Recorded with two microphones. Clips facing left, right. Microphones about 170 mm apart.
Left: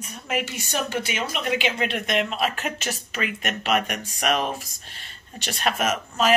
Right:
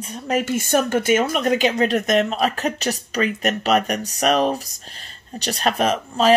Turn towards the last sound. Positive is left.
turn(degrees=-35)  # may be behind; listen again after turning